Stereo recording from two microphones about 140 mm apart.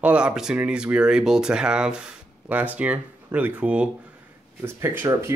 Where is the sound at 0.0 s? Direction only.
10° right (ahead or behind).